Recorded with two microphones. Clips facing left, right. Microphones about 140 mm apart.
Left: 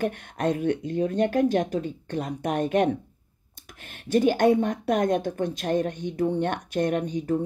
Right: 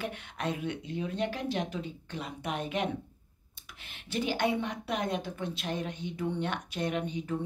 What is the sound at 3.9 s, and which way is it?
Speech, 50° left (ahead or behind).